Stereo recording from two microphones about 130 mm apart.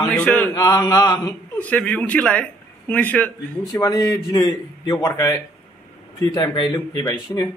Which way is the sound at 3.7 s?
30° left (ahead or behind).